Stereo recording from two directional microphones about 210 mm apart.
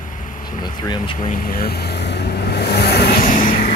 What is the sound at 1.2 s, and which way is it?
Vehicle, 40° left (ahead or behind).